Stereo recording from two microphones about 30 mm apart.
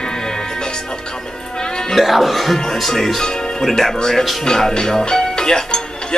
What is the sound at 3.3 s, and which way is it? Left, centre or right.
Music, left.